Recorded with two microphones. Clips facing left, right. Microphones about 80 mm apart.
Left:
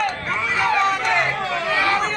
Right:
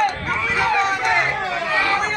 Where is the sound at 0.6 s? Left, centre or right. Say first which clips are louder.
Even; centre.